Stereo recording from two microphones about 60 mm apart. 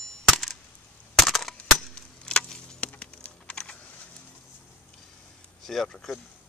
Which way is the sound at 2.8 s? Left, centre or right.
Left.